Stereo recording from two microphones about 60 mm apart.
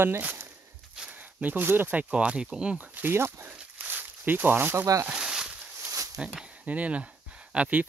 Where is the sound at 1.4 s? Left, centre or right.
Right.